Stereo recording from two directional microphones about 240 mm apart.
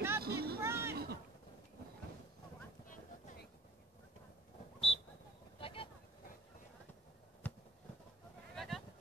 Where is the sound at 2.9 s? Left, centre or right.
Left.